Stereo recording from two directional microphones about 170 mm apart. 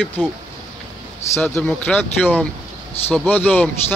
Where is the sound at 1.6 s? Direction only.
5° left (ahead or behind).